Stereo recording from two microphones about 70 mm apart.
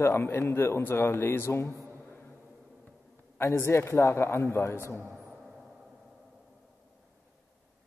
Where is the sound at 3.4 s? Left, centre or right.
Left.